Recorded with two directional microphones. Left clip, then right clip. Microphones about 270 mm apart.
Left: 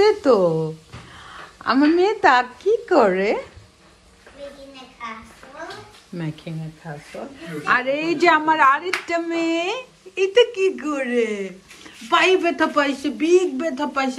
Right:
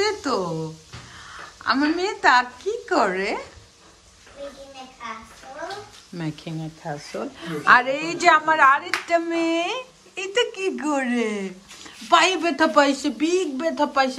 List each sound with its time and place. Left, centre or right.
0.0 s a sound: centre
1.2 s a woman's voice: centre
6.1 s a woman's voice: centre
6.8 s speech: centre
7.6 s a woman's voice: centre